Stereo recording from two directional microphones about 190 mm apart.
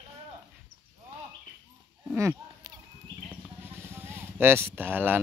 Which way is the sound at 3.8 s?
15° right (ahead or behind).